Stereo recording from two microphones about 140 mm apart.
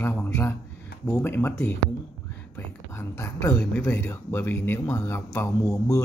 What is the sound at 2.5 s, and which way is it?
Speech, 20° left (ahead or behind).